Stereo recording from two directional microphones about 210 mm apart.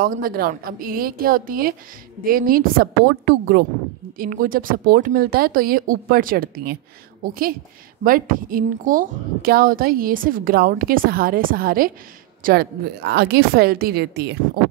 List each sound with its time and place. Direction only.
0.0 s speech: 45° right (ahead or behind)
8.0 s speech: 40° right (ahead or behind)